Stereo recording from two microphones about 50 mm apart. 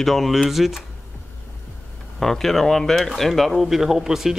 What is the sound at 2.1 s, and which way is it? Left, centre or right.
Speech, centre.